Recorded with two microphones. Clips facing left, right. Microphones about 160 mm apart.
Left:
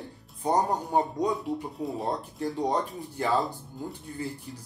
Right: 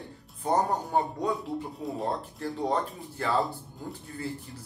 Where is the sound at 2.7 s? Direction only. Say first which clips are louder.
Even; 15° left (ahead or behind).